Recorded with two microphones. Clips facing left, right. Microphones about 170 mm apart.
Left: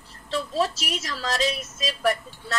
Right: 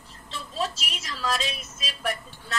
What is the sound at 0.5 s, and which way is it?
A woman's voice, 40° left (ahead or behind).